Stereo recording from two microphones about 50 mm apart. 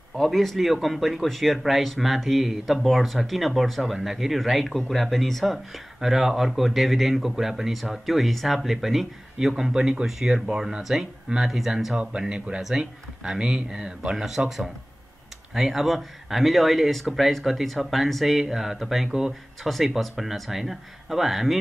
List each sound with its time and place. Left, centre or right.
0.1 s a man's voice: centre
11.9 s speech: centre
14.1 s a man's voice: centre
15.5 s a man's voice: centre